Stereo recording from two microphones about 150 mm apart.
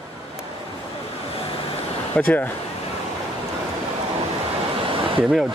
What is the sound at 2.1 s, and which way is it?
Speech, 10° left (ahead or behind).